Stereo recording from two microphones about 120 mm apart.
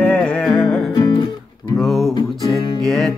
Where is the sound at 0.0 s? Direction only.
10° left (ahead or behind).